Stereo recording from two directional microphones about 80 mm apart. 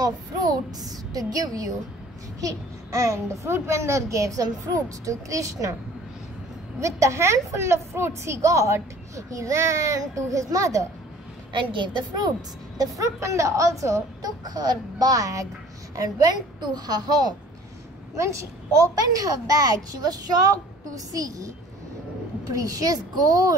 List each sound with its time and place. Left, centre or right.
0.0 s a woman's voice: right
6.8 s a woman's voice: right
11.5 s a child's voice: right
14.4 s a child's voice: right
18.1 s a woman's voice: right